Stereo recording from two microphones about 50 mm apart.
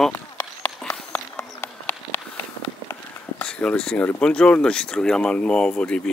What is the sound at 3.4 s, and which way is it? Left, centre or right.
Speech, centre.